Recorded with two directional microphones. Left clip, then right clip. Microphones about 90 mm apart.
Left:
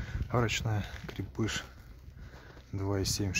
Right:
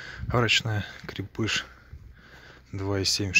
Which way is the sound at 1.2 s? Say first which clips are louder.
Right 7 dB; 15° right (ahead or behind).